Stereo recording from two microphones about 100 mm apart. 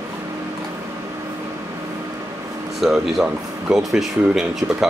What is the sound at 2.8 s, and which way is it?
Speech, 5° right (ahead or behind).